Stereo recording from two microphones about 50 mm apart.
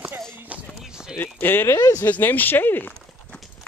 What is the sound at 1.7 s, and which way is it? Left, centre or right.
Speech, left.